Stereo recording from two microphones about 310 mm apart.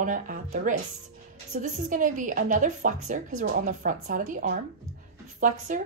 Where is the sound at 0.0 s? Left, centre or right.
Right.